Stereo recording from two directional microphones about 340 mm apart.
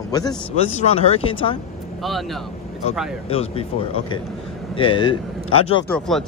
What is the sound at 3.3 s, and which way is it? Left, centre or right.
A man's voice, centre.